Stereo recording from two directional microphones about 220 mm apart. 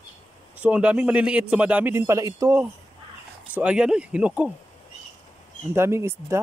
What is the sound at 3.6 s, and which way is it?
Speech, 5° right (ahead or behind).